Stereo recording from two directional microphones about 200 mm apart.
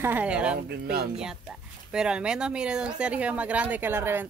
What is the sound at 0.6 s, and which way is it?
Speech, 50° right (ahead or behind).